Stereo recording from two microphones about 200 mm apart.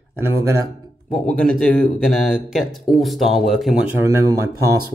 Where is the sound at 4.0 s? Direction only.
15° right (ahead or behind).